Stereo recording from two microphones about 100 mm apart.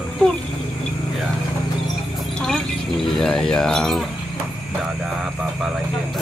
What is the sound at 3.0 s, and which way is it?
Speech, 5° left (ahead or behind).